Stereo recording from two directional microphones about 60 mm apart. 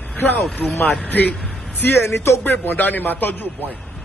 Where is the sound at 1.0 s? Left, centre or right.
Left.